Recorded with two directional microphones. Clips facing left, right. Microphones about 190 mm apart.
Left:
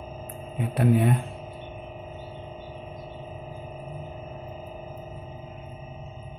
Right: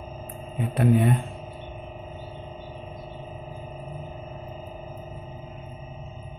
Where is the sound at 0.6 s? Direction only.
Centre (ahead or behind).